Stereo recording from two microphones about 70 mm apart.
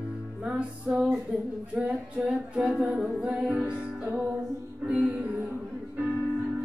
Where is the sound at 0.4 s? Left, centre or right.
Centre.